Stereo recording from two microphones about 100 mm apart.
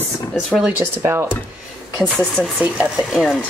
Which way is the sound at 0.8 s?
25° right (ahead or behind).